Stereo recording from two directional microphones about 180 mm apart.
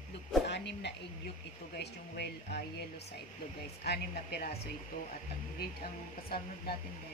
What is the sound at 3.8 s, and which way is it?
Speech, 65° left (ahead or behind).